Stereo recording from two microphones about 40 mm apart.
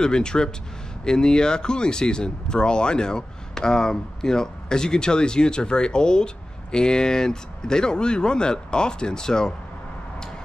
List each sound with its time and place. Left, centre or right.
0.0 s speech: centre